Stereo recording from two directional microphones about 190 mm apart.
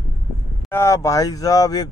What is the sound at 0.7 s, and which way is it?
Speech, 15° left (ahead or behind).